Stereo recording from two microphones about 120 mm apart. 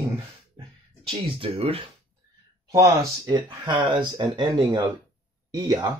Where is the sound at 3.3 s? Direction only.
40° right (ahead or behind).